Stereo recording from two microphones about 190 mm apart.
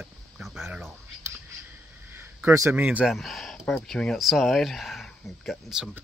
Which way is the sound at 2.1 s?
10° right (ahead or behind).